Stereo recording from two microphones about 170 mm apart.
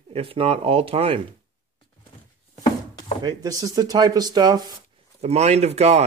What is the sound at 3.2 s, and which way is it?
Speech, 25° right (ahead or behind).